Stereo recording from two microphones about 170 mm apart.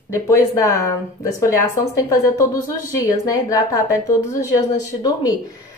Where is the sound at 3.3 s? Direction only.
20° left (ahead or behind).